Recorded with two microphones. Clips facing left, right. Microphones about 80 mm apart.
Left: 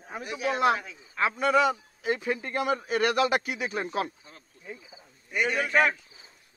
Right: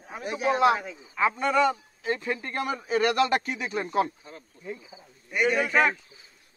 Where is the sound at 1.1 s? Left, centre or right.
Centre.